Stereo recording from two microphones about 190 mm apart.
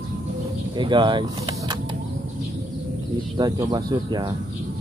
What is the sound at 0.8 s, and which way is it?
Speech, 25° right (ahead or behind).